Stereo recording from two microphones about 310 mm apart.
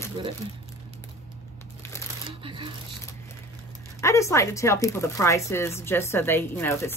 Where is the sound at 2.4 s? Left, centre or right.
Centre.